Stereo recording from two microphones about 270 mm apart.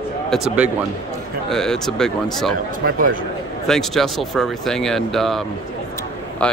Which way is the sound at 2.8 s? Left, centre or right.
Right.